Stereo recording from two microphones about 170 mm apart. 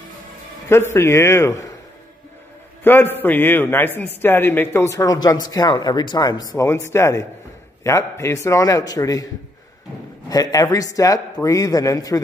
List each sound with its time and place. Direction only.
0.7 s a man's voice: 15° left (ahead or behind)
2.8 s a man's voice: 10° left (ahead or behind)
10.3 s a man's voice: 20° left (ahead or behind)